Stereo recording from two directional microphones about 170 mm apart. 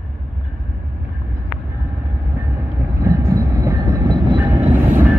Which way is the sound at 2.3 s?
15° right (ahead or behind).